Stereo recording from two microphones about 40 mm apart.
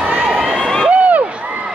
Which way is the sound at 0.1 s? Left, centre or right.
Right.